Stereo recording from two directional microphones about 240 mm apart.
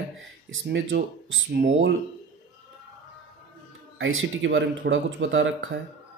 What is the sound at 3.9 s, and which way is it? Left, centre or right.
Speech, right.